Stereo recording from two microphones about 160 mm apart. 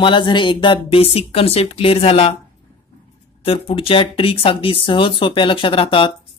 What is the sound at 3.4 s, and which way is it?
Speech, 35° left (ahead or behind).